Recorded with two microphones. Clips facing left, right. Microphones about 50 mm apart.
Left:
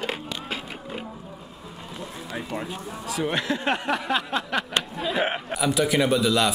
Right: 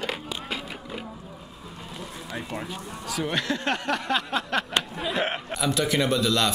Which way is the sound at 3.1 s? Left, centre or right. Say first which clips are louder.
Left 2 dB; centre.